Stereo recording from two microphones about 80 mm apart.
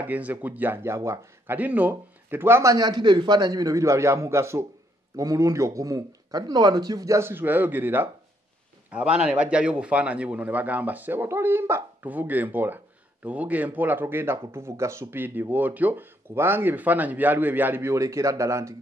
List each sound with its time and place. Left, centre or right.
0.0 s speech: right
1.6 s speech: right
2.7 s a man's voice: right
7.1 s speech: right
8.9 s a man's voice: centre; by 11.8 s right
12.0 s speech: right
17.9 s speech: right